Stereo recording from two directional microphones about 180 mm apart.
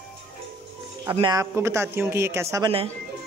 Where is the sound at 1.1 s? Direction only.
25° right (ahead or behind).